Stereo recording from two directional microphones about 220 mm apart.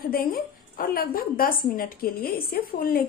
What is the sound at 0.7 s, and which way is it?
A woman's voice, 40° left (ahead or behind).